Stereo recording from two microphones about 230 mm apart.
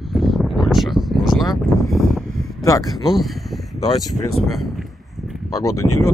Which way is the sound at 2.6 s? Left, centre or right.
Centre.